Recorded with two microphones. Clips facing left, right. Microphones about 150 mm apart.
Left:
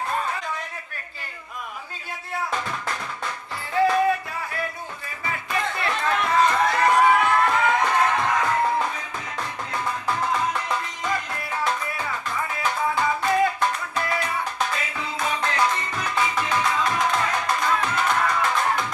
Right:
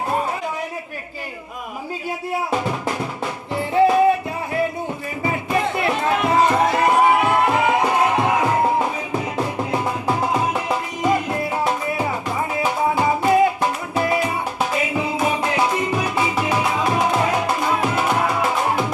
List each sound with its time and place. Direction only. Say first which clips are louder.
0.1 s a sound: right 6 dB; 25° right (ahead or behind)
2.5 s drum: right 7 dB; 25° right (ahead or behind)
3.5 s music: right 5 dB; 25° right (ahead or behind)
5.2 s music: right 6 dB; 25° right (ahead or behind)